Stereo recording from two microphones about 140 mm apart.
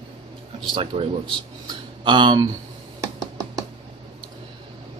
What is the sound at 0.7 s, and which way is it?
Speech, 35° right (ahead or behind).